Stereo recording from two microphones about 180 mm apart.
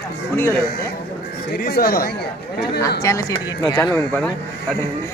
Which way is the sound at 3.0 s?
20° left (ahead or behind).